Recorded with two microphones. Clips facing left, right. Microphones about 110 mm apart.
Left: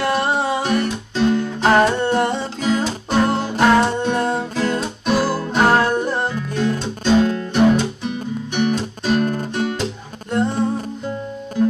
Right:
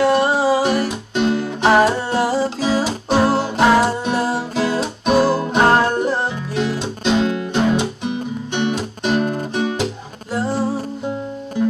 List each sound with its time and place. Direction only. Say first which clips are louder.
0.0 s music: right 4 dB; centre (ahead or behind)
1.1 s music: left 1 dB; 15° right (ahead or behind)
1.4 s music: right 3 dB; 5° right (ahead or behind)
3.2 s music: right 1 dB; 30° right (ahead or behind)
3.5 s music: left 1 dB; 5° right (ahead or behind)
6.8 s music: left 4 dB; 15° right (ahead or behind)